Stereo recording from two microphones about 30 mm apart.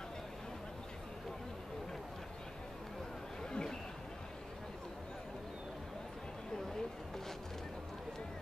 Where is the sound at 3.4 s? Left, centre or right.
Left.